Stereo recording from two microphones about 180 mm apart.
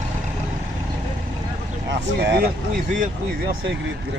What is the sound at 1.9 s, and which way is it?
Speech, 70° right (ahead or behind).